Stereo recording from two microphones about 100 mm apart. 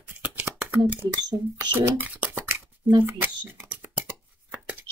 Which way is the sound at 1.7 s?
20° right (ahead or behind).